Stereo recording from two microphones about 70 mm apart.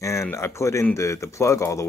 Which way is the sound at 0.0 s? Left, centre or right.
Left.